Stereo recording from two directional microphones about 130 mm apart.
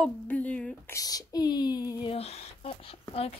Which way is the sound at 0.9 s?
30° left (ahead or behind).